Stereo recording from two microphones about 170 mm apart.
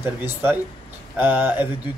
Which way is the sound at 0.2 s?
10° right (ahead or behind).